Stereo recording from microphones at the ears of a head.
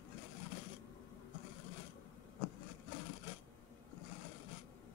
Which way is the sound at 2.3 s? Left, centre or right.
Left.